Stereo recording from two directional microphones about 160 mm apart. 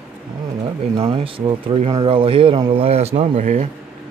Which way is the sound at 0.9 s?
35° right (ahead or behind).